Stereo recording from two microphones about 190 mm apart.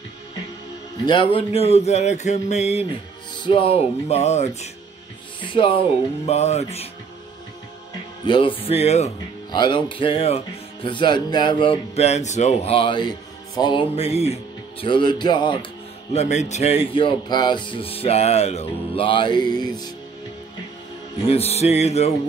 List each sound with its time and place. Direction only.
1.0 s speech: 25° left (ahead or behind)
8.3 s speech: 25° left (ahead or behind)
16.1 s speech: 35° left (ahead or behind)
21.3 s speech: 35° left (ahead or behind)